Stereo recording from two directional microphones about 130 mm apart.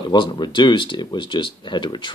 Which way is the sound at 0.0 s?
40° left (ahead or behind).